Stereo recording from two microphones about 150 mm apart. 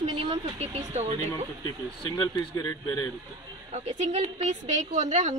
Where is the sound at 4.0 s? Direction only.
45° right (ahead or behind).